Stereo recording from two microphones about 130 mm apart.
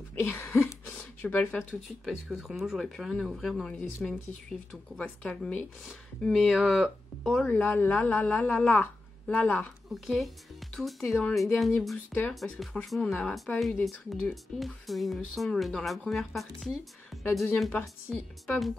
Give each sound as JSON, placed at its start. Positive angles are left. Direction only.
{"t": 0.2, "sound": "a sound", "side_deg": 20}
{"t": 1.2, "sound": "speech", "side_deg": 15}
{"t": 9.8, "sound": "speech", "side_deg": 0}